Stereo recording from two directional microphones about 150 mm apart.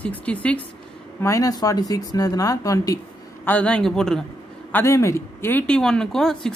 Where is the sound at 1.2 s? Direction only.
20° left (ahead or behind).